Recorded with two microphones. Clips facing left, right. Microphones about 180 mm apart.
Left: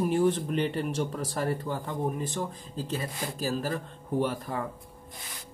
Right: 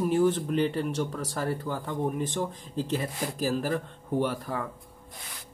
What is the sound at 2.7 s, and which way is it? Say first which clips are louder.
Speech: right 4 dB; 20° right (ahead or behind).